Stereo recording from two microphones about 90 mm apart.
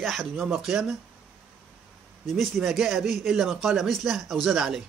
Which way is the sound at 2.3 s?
Centre (ahead or behind).